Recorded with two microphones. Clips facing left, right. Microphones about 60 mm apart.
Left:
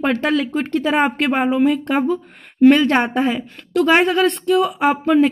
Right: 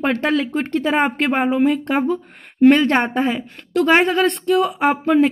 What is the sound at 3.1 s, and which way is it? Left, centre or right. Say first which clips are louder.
Speech: left 1 dB; centre.